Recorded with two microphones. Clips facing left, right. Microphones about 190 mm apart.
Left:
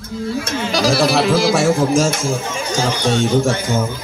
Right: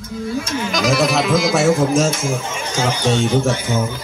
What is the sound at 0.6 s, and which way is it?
Speech, 35° left (ahead or behind).